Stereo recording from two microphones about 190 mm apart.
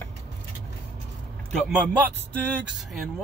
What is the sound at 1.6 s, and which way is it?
Speech, 5° right (ahead or behind).